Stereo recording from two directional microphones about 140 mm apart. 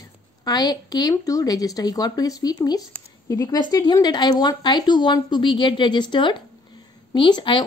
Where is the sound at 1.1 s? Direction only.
25° left (ahead or behind).